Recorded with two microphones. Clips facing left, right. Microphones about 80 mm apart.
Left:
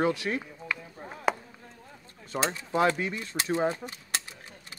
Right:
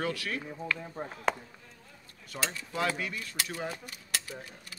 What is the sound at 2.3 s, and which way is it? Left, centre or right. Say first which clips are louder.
Speech: left 7 dB; left.